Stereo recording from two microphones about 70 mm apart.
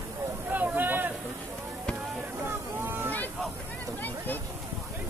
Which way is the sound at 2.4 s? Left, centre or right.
Right.